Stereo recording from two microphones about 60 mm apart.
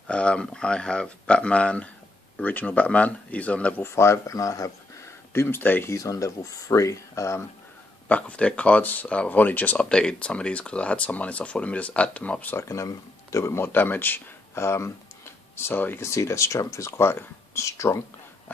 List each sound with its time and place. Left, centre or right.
0.1 s speech: centre
3.8 s speech: left
5.0 s a sound: left
5.9 s speech: left
8.1 s speech: left
9.8 s speech: centre
12.6 s speech: left
13.7 s speech: left
14.6 s speech: left
16.0 s speech: left